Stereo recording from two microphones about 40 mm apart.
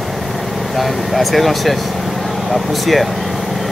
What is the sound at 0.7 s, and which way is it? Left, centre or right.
Speech, centre.